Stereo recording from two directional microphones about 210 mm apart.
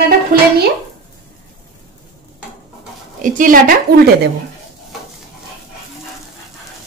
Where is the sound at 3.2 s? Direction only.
40° right (ahead or behind).